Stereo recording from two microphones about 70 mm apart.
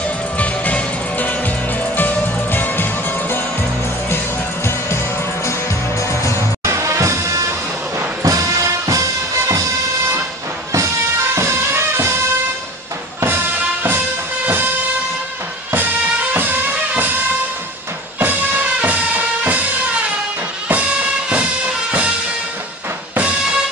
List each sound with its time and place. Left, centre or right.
0.4 s music: centre
4.6 s music: left
6.6 s music: right
11.3 s music: right
13.8 s music: right
15.7 s music: right
18.2 s music: right